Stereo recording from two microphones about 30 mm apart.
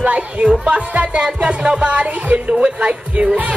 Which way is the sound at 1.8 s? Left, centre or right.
Right.